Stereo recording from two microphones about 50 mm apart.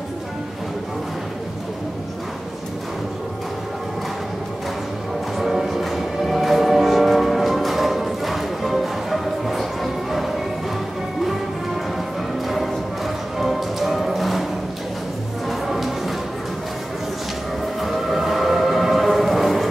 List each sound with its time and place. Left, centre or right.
5.4 s music: centre
13.4 s music: centre
15.6 s music: centre
17.7 s music: centre